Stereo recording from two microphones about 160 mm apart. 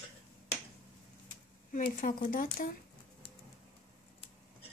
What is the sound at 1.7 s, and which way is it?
Speech, 60° left (ahead or behind).